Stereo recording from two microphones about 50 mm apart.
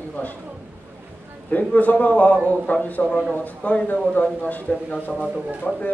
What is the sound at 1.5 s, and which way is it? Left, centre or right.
A man's voice, left.